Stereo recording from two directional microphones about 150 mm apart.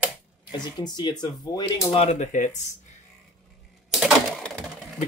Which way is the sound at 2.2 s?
60° left (ahead or behind).